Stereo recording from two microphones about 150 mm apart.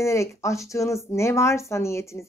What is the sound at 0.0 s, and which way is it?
A woman's voice, 20° left (ahead or behind).